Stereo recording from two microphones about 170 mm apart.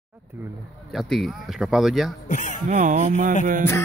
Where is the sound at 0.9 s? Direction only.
Centre (ahead or behind).